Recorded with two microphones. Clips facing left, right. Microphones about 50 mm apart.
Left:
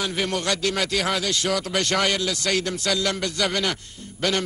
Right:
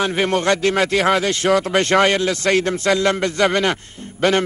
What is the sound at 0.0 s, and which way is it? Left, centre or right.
A man's voice, right.